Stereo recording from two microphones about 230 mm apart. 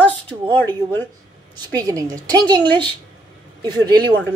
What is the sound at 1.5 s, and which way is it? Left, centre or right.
A woman's voice, centre.